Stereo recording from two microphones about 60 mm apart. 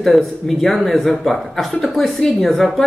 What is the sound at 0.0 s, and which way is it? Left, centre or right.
A woman's voice, centre.